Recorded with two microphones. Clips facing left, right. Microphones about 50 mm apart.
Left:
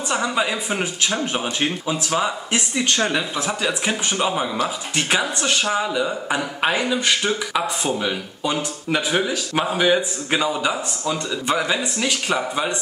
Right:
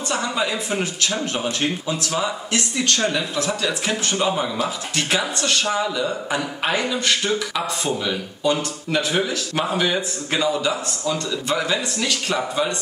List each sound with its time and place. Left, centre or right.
0.1 s speech: centre